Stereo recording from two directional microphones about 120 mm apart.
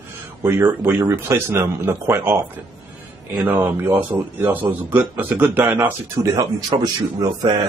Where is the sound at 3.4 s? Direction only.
15° right (ahead or behind).